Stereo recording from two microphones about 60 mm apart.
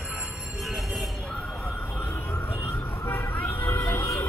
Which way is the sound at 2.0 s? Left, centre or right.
Left.